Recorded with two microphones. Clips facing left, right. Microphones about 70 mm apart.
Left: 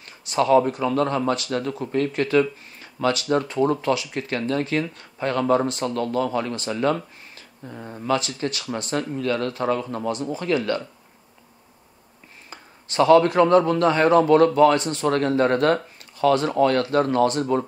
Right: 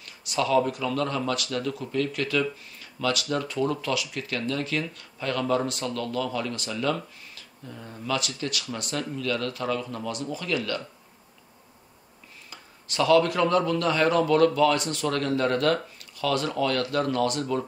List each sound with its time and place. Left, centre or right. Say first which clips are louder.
0.0 s a man's voice: left 5 dB; left
12.4 s a man's voice: left 3 dB; left